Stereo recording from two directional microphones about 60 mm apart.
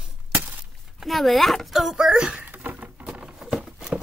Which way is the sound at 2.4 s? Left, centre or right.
Right.